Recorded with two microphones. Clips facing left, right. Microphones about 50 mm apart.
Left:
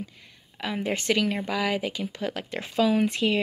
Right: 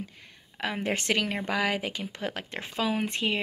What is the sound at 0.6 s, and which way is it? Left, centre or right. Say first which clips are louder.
Speech: left 1 dB; right.